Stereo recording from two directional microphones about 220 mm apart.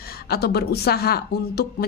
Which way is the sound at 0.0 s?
45° left (ahead or behind).